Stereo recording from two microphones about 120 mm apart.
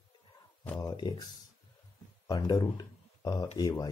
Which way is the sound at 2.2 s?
35° left (ahead or behind).